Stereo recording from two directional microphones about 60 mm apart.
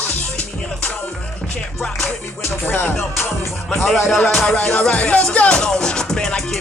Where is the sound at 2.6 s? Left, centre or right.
Left.